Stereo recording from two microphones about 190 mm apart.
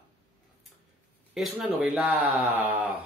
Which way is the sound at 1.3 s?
5° right (ahead or behind).